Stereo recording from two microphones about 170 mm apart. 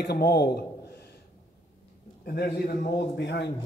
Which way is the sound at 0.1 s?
70° left (ahead or behind).